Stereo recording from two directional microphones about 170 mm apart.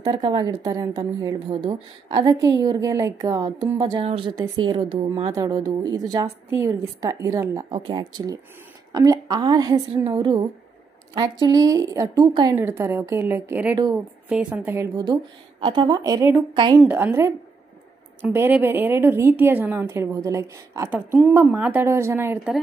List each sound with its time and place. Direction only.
0.0 s a woman's voice: 25° right (ahead or behind)
5.3 s a woman's voice: 20° right (ahead or behind)
7.7 s a woman's voice: 30° right (ahead or behind); by 14.9 s 10° right (ahead or behind)
15.6 s a woman's voice: 25° right (ahead or behind)